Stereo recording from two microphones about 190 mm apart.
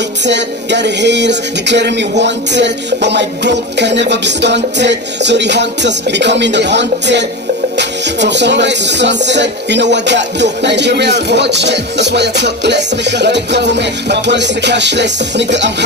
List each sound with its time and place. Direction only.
0.2 s music: 65° right (ahead or behind)